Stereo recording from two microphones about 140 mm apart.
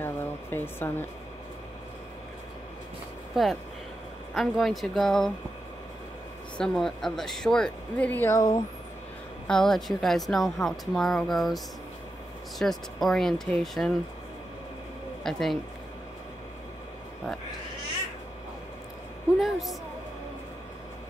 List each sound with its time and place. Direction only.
0.0 s a sound: 15° left (ahead or behind)
3.4 s speech: centre (ahead or behind)
6.6 s speech: 5° left (ahead or behind)
9.5 s speech: 5° left (ahead or behind)
15.2 s speech: centre (ahead or behind)
19.4 s a woman's voice: centre (ahead or behind)